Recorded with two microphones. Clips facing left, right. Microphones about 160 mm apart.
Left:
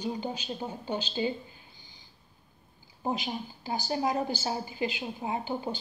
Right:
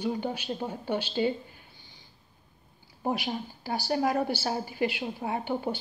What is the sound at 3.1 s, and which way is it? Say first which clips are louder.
A woman's voice: right 2 dB; 60° right (ahead or behind).